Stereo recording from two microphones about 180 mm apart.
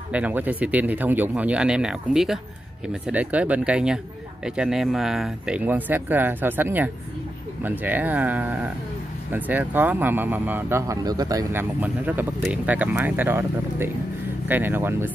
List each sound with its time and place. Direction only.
0.1 s speech: 10° right (ahead or behind)